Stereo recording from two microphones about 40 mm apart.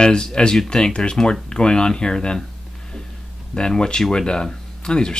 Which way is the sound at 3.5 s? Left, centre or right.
Centre.